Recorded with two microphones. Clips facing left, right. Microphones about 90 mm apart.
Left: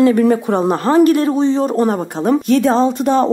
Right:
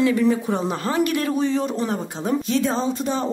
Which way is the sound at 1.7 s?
50° left (ahead or behind).